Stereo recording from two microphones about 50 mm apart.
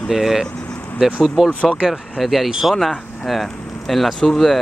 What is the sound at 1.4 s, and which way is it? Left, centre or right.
Speech, centre.